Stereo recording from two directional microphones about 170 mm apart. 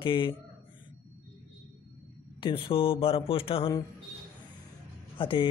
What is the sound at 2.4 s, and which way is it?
Speech, 30° left (ahead or behind).